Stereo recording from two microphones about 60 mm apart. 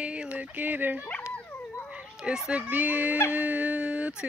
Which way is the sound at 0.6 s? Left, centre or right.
Right.